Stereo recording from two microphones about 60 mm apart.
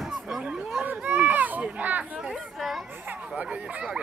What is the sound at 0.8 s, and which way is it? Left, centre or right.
Run, right.